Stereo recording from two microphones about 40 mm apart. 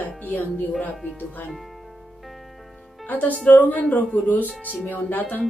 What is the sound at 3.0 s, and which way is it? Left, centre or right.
Speech, left.